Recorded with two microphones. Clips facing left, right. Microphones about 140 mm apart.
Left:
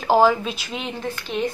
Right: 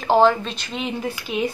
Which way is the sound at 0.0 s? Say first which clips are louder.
Even; centre (ahead or behind).